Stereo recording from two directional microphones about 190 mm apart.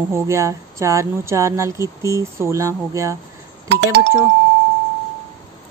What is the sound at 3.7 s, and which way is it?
Music, 65° right (ahead or behind).